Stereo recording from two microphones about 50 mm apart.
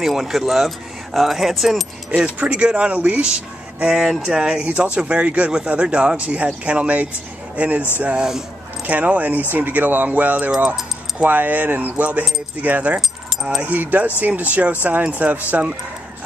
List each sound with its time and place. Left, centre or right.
0.0 s speech: centre
2.0 s speech: right
3.9 s speech: centre
4.2 s speech: centre
4.6 s speech: right
8.2 s speech: centre
8.8 s speech: right